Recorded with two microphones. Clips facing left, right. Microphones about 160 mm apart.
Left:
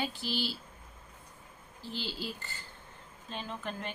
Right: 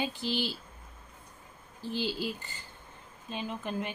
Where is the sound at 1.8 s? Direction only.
15° right (ahead or behind).